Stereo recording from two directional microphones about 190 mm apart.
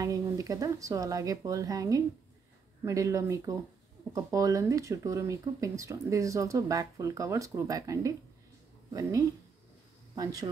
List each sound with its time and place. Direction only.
0.0 s speech: 20° right (ahead or behind)
10.1 s speech: 20° right (ahead or behind)